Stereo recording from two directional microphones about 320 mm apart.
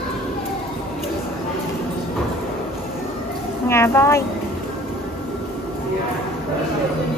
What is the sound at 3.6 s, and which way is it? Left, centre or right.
Speech, centre.